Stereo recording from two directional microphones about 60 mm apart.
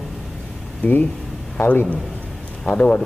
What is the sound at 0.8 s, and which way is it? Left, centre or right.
A man's voice, left.